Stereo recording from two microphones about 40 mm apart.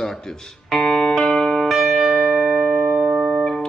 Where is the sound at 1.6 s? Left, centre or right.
Centre.